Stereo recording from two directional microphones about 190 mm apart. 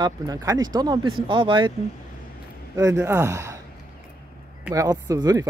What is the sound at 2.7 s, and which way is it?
Speech, 15° right (ahead or behind).